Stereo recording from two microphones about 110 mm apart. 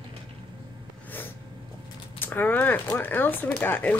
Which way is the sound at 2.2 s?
15° left (ahead or behind).